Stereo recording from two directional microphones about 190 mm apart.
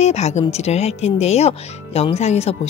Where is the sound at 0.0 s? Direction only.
35° left (ahead or behind).